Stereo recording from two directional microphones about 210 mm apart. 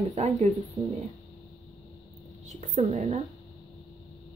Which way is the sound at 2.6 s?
35° right (ahead or behind).